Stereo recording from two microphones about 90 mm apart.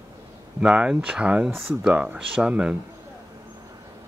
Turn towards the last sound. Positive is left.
turn(degrees=-10)  # may be behind; listen again after turning